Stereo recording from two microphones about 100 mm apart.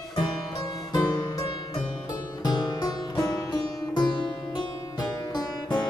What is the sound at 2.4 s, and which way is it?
Music, 45° left (ahead or behind).